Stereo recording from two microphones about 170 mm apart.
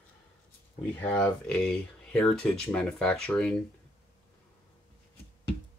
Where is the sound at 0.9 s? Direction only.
10° left (ahead or behind).